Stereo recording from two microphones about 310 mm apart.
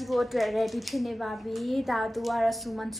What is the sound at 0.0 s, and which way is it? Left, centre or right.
Speech, centre.